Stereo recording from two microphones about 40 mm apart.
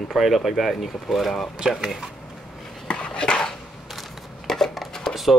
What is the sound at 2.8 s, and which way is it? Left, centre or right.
Dog, left.